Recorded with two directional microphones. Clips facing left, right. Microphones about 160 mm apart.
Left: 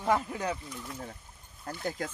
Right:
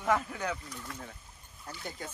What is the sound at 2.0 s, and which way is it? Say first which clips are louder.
Speech: left 6 dB; 90° left.